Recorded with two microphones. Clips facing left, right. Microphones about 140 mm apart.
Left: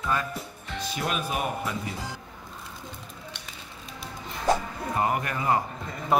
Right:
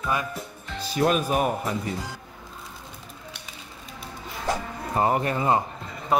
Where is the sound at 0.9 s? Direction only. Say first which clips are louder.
Right 8 dB; 45° right (ahead or behind).